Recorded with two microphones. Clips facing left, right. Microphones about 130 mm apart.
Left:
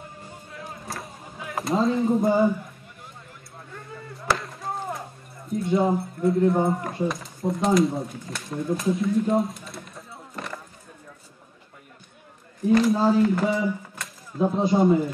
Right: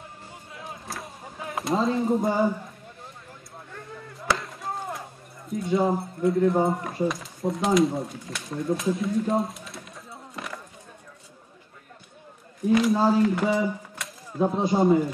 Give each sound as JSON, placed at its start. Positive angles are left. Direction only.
{"t": 0.5, "sound": "chop", "side_deg": 0}
{"t": 4.3, "sound": "chop", "side_deg": 0}
{"t": 5.7, "sound": "speech", "side_deg": 0}
{"t": 12.6, "sound": "speech", "side_deg": 0}